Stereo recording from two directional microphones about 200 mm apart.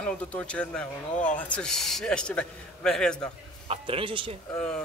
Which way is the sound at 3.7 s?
30° right (ahead or behind).